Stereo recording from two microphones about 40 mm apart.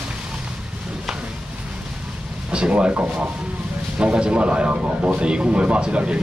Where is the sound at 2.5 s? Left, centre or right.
Right.